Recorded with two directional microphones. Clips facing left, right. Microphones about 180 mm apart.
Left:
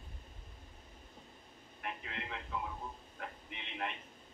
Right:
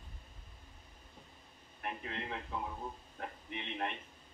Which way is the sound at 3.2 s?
35° right (ahead or behind).